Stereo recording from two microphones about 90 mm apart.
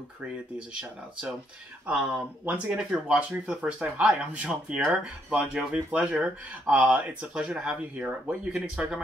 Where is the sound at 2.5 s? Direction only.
15° right (ahead or behind).